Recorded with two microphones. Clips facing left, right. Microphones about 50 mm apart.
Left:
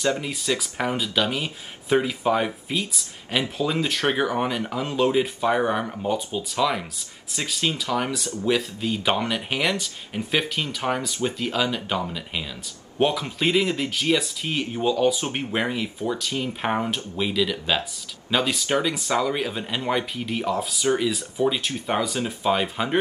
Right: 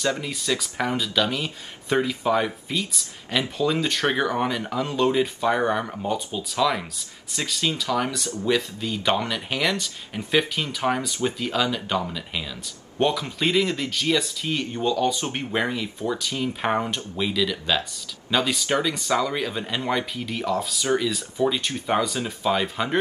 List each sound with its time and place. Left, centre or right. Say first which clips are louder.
0.6 s speech: even; centre